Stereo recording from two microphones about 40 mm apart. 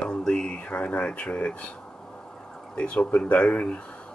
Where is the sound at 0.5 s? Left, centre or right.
Left.